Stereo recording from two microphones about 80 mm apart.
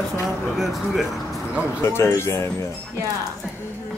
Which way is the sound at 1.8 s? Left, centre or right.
Left.